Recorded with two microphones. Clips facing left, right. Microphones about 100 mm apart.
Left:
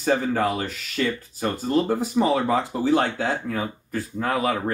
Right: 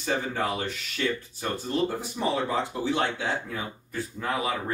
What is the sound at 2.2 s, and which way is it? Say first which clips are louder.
Speech: left 7 dB; 90° left.